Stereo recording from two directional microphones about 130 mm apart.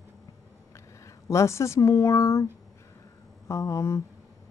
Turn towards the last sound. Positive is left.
turn(degrees=25)  # may be behind; listen again after turning